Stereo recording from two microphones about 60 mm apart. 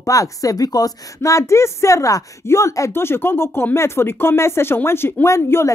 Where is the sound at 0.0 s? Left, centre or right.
Left.